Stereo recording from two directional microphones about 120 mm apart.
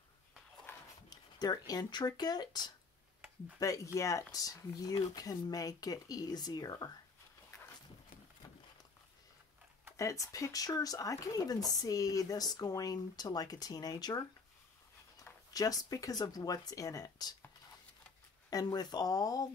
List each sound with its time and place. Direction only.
0.7 s a sound: 20° left (ahead or behind)
1.1 s a sound: 35° left (ahead or behind)
1.7 s speech: 35° left (ahead or behind)
9.9 s speech: 25° left (ahead or behind)
15.5 s speech: 30° left (ahead or behind)
18.5 s speech: 30° left (ahead or behind)